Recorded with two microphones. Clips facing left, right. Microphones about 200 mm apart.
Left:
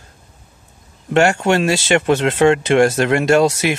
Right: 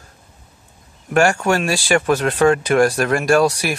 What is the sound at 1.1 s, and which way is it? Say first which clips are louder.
Speech: left 2 dB; 25° left (ahead or behind).